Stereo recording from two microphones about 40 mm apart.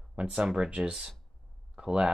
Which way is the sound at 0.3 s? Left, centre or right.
Centre.